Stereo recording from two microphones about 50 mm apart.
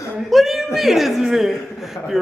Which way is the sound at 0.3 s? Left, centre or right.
Centre.